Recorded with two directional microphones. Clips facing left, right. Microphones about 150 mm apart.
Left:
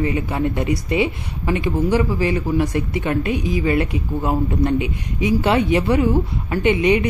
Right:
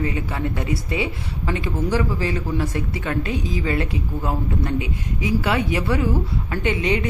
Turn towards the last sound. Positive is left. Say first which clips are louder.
# left 5 dB
turn(degrees=15)  # may be behind; listen again after turning